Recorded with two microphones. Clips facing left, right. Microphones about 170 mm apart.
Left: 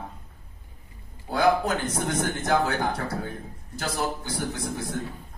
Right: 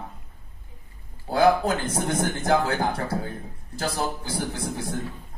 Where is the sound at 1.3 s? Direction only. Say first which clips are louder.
Right 3 dB; 30° right (ahead or behind).